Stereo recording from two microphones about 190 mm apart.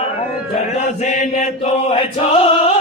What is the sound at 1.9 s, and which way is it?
Chant, 30° left (ahead or behind).